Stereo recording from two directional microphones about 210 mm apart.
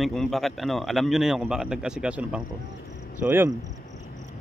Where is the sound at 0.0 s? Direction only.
Centre (ahead or behind).